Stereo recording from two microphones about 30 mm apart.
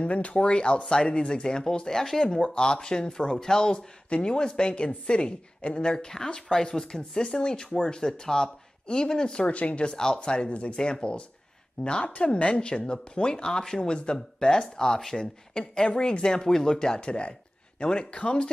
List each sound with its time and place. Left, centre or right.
0.0 s speech: left
1.9 s speech: centre
2.5 s speech: left
5.9 s speech: left
6.7 s speech: centre
7.2 s speech: left
9.5 s speech: left
9.8 s speech: left
10.5 s speech: left
10.8 s speech: left
13.5 s speech: left